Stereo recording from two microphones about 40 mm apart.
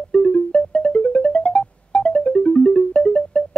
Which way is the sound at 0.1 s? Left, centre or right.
Left.